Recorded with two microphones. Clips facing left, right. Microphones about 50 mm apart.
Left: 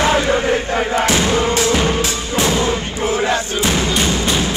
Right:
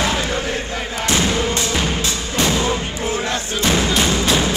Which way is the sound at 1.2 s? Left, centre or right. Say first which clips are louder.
Left 3 dB; left.